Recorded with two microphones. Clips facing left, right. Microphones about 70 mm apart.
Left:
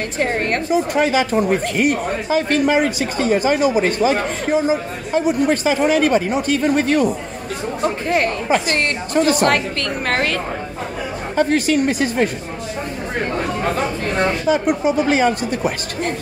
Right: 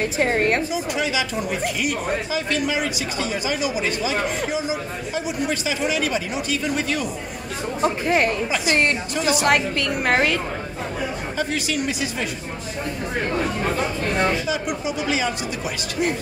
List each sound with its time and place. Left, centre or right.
0.0 s a woman's voice: centre
0.7 s speech: left
7.8 s a woman's voice: centre
9.1 s speech: left
9.4 s a woman's voice: centre
11.3 s speech: left
13.7 s speech: left